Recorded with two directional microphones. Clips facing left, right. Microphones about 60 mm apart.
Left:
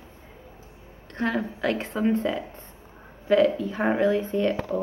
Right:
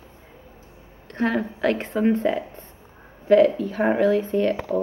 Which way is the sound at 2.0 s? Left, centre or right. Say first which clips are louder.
Right 3 dB; right.